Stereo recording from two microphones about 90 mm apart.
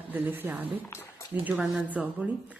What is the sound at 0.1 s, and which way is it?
Speech, 20° right (ahead or behind).